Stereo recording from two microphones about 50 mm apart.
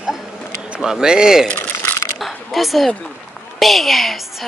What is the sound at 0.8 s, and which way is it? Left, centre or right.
Speech, centre.